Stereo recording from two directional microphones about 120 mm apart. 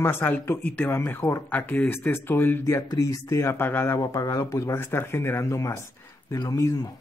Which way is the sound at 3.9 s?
30° left (ahead or behind).